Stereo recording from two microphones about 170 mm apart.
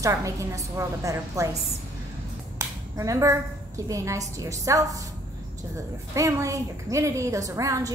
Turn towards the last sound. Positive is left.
turn(degrees=-20)  # may be behind; listen again after turning